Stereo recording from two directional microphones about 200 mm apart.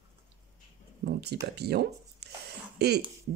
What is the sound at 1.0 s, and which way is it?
Speech, 55° right (ahead or behind).